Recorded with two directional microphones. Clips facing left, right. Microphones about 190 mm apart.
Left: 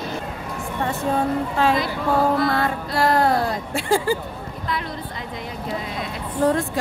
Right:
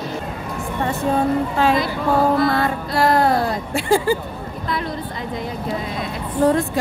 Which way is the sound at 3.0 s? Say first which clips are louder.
Right 2 dB; 10° right (ahead or behind).